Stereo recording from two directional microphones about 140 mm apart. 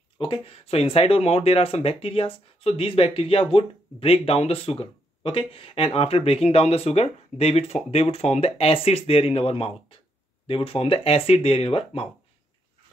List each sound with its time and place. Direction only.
0.2 s speech: 40° left (ahead or behind)